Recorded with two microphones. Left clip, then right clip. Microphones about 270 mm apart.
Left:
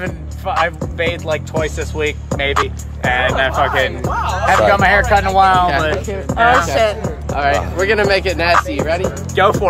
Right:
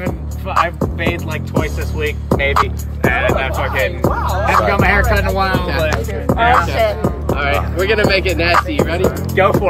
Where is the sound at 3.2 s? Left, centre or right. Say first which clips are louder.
Left 2 dB; centre.